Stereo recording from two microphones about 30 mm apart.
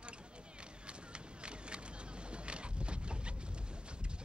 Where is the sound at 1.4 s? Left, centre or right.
Right.